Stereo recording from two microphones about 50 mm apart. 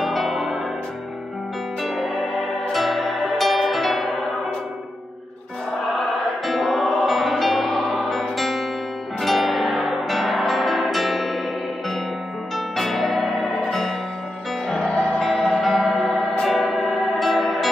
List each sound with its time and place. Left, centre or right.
0.0 s music: centre
1.8 s music: centre
6.4 s music: centre
12.5 s music: centre
14.8 s music: left
15.1 s music: centre